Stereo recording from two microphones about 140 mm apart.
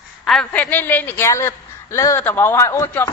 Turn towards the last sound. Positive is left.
turn(degrees=15)  # may be behind; listen again after turning